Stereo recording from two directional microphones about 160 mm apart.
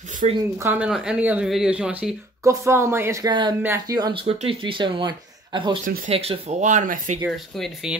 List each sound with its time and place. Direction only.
0.2 s speech: 45° right (ahead or behind)
0.6 s speech: 15° right (ahead or behind); by 7.2 s 50° right (ahead or behind)
7.5 s speech: centre (ahead or behind)